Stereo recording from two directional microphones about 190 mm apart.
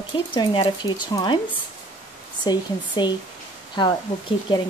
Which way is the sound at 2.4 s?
25° left (ahead or behind).